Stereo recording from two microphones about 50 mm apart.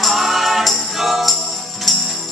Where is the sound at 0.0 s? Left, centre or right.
Centre.